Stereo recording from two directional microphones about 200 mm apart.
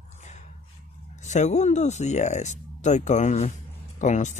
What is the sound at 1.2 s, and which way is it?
Speech, 35° left (ahead or behind).